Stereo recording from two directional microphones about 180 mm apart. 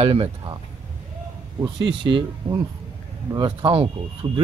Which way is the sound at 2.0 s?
25° right (ahead or behind).